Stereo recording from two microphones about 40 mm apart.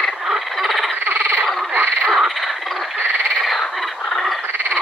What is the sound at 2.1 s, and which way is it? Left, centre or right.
Frog, centre.